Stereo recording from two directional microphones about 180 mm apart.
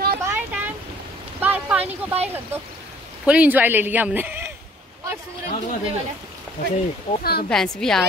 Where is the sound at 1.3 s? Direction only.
10° right (ahead or behind).